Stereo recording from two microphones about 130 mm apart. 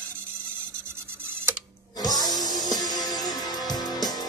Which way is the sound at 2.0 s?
30° left (ahead or behind).